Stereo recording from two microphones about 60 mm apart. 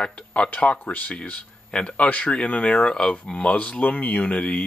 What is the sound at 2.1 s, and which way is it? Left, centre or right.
Speech, left.